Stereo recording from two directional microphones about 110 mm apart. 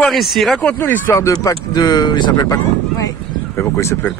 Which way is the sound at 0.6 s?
15° left (ahead or behind).